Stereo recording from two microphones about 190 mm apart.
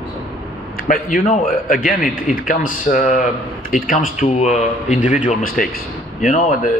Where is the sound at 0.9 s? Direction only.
45° left (ahead or behind).